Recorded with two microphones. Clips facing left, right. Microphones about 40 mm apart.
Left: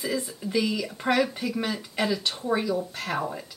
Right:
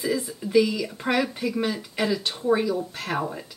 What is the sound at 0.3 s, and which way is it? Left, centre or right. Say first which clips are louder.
Speech: right 9 dB; centre.